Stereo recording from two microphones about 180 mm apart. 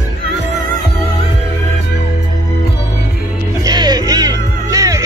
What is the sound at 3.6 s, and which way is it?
Music, 20° right (ahead or behind).